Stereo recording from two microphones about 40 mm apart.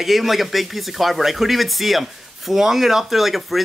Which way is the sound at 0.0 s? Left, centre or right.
Centre.